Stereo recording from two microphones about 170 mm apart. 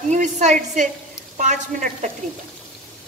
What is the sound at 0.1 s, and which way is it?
A woman's voice, 45° right (ahead or behind).